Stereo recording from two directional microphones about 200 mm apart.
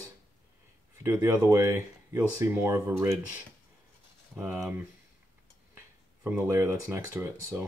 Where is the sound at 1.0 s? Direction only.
15° right (ahead or behind).